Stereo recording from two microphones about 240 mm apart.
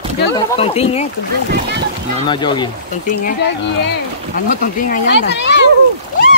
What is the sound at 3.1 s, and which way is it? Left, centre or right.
Speech, left.